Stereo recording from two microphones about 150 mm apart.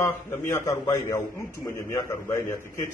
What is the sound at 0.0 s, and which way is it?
A man's voice, 20° left (ahead or behind).